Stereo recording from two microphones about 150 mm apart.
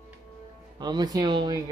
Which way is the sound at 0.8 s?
30° right (ahead or behind).